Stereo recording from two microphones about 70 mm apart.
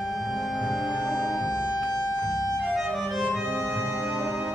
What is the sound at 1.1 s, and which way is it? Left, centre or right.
Music, left.